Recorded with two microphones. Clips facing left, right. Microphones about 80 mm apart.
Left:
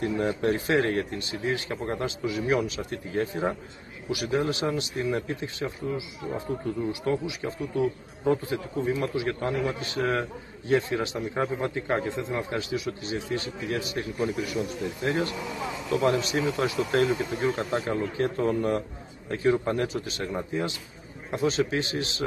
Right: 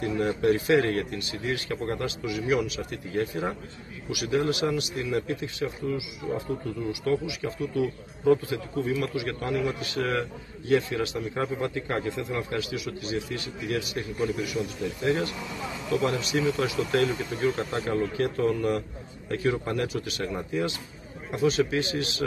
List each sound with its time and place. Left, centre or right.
0.0 s a man's voice: left